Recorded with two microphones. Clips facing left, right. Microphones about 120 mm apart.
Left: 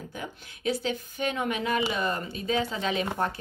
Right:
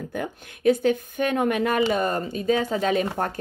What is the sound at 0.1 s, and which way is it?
Speech, 50° right (ahead or behind).